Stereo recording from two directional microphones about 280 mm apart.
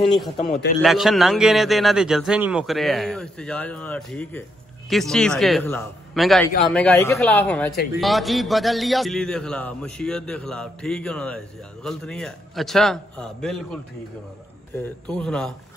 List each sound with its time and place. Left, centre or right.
0.0 s a man's voice: centre
0.4 s a man's voice: left
0.8 s a man's voice: centre
14.8 s a man's voice: centre